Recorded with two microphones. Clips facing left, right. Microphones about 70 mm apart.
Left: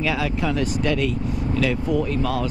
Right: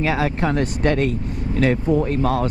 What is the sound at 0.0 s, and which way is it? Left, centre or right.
Speech, right.